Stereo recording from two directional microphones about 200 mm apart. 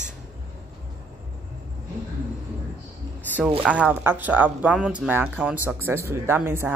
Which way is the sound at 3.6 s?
5° right (ahead or behind).